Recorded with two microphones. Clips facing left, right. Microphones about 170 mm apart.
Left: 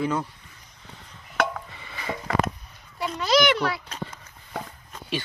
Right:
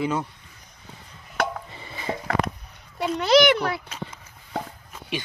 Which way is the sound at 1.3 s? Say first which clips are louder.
Left 1 dB; 35° right (ahead or behind).